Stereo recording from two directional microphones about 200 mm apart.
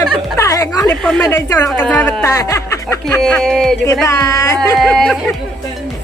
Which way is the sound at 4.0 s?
15° left (ahead or behind).